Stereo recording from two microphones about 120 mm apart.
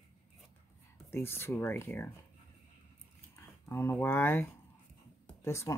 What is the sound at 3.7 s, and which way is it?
Speech, 20° left (ahead or behind).